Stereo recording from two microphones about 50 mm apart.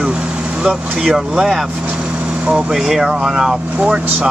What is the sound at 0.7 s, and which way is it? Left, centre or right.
Speech, centre.